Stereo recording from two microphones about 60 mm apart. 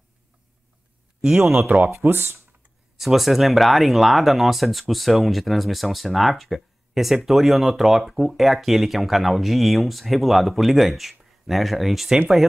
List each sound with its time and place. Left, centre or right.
1.4 s speech: right
3.0 s speech: centre